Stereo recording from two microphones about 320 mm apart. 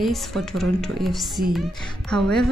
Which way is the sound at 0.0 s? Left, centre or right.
Centre.